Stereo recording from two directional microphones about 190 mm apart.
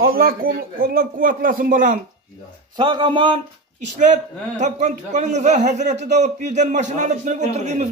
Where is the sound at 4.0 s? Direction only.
40° right (ahead or behind).